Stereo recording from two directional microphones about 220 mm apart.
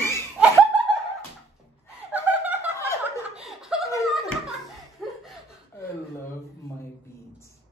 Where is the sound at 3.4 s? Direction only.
Centre (ahead or behind).